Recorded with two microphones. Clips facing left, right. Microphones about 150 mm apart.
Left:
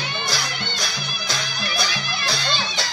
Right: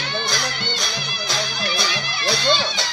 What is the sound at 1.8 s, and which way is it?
Music, centre (ahead or behind).